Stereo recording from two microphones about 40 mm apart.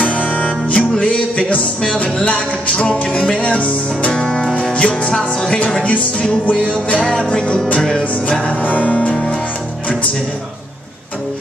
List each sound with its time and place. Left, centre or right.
0.0 s music: left
4.1 s music: left
7.0 s music: left
8.0 s music: left
8.4 s music: left
8.6 s music: left
9.1 s music: centre